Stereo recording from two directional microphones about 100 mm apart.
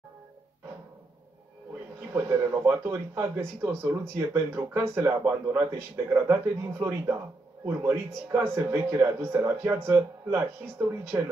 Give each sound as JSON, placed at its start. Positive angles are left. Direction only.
{"t": 2.1, "sound": "speech", "side_deg": -30}